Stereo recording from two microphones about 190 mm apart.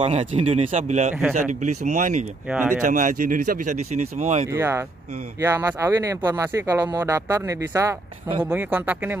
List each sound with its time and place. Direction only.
0.0 s speech: 35° right (ahead or behind)
2.5 s speech: 10° right (ahead or behind)
2.8 s speech: 40° right (ahead or behind)
4.2 s speech: 35° right (ahead or behind)
4.5 s speech: 15° right (ahead or behind)